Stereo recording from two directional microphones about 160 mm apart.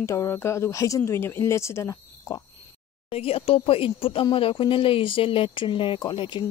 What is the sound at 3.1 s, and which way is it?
Speech, 35° left (ahead or behind).